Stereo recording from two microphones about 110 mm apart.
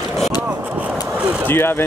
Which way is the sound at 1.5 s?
20° left (ahead or behind).